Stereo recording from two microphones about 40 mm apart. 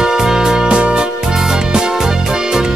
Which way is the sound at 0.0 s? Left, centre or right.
Centre.